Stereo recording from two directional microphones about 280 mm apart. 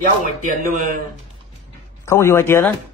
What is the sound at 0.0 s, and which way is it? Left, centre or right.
A man's voice, right.